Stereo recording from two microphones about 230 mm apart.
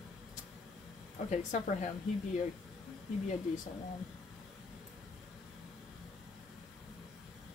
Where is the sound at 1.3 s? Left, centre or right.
Left.